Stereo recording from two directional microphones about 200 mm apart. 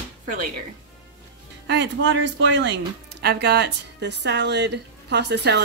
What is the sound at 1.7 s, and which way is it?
Speech, 60° right (ahead or behind).